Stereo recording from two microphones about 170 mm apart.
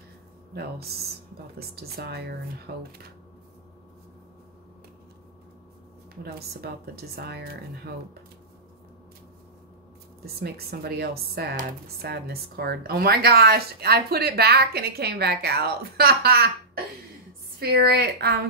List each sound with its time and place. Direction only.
0.6 s speech: 70° right (ahead or behind)
6.2 s speech: 65° right (ahead or behind)
10.2 s speech: 65° right (ahead or behind)